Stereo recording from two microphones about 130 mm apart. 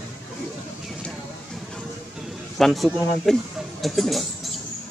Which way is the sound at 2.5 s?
Centre (ahead or behind).